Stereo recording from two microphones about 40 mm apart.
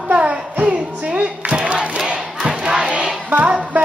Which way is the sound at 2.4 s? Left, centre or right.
Right.